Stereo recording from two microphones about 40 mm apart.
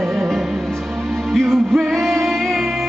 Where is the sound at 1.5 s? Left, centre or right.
Centre.